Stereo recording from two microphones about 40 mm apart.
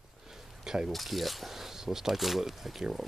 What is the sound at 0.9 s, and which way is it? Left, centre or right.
Speech, centre.